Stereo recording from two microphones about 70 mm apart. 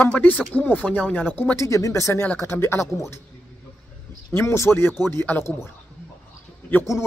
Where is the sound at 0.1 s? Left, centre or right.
Centre.